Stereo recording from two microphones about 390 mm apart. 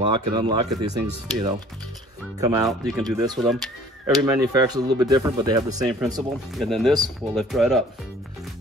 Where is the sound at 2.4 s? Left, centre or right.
Centre.